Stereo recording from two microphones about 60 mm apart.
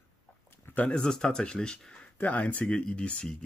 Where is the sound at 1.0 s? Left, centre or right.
Centre.